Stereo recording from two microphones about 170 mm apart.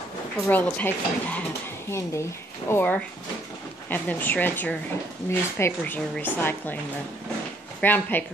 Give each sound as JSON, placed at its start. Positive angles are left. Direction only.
{"t": 0.5, "sound": "speech", "side_deg": 10}
{"t": 7.8, "sound": "speech", "side_deg": 10}